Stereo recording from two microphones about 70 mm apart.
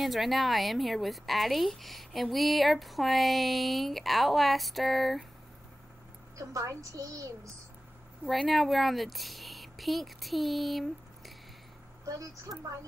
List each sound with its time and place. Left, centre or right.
0.0 s a woman's voice: centre
6.3 s a woman's voice: right
8.3 s a woman's voice: centre
12.1 s a woman's voice: right